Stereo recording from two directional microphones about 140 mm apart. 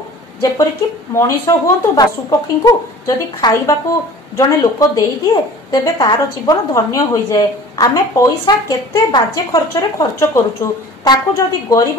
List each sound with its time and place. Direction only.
1.1 s speech: 20° left (ahead or behind)